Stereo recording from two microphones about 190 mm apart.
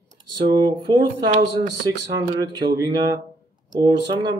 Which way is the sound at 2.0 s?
20° right (ahead or behind).